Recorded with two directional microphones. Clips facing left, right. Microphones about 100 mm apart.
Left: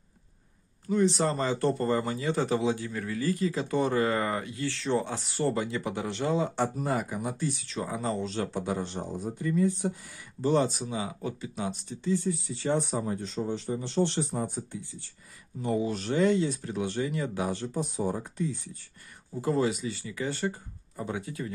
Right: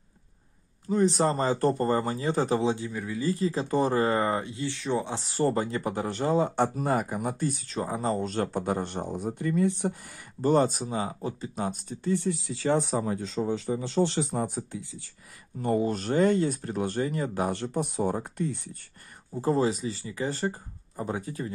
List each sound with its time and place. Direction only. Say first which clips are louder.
0.8 s speech: right 2 dB; 40° right (ahead or behind)
2.8 s speech: right 1 dB; 15° right (ahead or behind)
5.1 s speech: right 3 dB; 35° right (ahead or behind); by 9.9 s 60° right (ahead or behind)
10.4 s speech: right 2 dB; 45° right (ahead or behind); by 13.8 s 90° right
14.3 s speech: right 2 dB; 80° right
15.6 s speech: right 3 dB; 50° right (ahead or behind)
17.6 s speech: right 3 dB; 60° right (ahead or behind)
19.3 s speech: right 2 dB; 35° right (ahead or behind)